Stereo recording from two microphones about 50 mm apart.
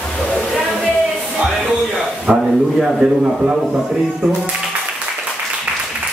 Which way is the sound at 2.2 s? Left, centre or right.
Centre.